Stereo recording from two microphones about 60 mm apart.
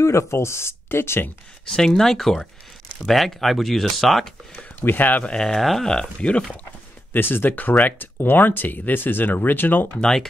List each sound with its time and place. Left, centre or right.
0.0 s speech: left
1.7 s speech: centre
4.8 s speech: left
5.2 s speech: centre
7.1 s speech: left
9.9 s speech: centre